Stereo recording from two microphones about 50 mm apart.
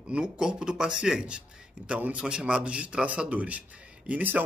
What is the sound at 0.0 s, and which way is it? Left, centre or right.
A man's voice, centre.